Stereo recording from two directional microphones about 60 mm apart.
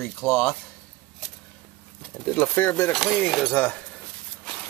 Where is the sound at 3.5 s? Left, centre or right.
Left.